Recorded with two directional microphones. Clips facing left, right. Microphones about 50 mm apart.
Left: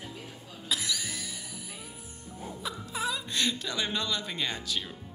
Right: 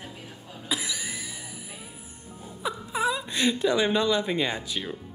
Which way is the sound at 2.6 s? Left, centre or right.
Centre.